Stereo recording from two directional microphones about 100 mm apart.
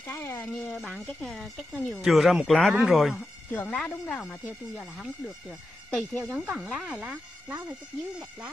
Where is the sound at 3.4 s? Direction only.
20° left (ahead or behind).